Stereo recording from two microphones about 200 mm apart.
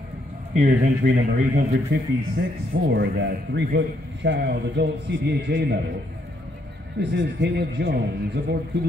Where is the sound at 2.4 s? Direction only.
55° right (ahead or behind).